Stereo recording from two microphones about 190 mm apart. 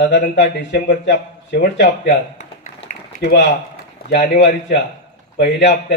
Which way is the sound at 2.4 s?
40° left (ahead or behind).